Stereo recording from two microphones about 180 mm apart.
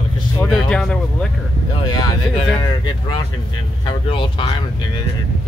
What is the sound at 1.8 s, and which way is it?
Speech, 25° left (ahead or behind).